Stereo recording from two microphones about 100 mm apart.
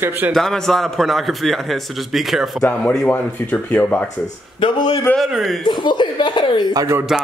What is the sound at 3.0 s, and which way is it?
Speech, 15° left (ahead or behind).